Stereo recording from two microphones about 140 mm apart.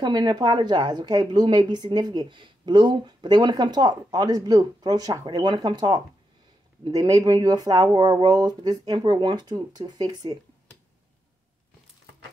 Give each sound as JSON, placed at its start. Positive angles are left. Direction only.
{"t": 0.0, "sound": "a woman's voice", "side_deg": -30}